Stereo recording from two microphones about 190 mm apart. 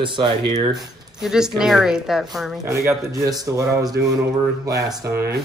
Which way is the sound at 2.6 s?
15° right (ahead or behind).